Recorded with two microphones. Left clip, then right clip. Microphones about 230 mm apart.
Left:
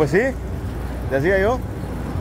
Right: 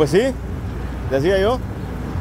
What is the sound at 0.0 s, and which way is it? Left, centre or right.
Speech, centre.